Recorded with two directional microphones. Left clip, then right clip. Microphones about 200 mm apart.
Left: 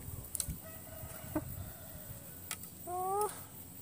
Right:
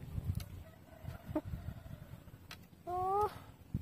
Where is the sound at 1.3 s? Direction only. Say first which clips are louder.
Even; 15° right (ahead or behind).